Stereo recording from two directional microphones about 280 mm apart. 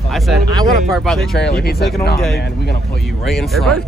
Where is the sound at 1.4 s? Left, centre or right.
Left.